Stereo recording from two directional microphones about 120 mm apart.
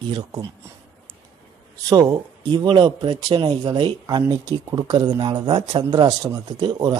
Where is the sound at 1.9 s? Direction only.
35° right (ahead or behind).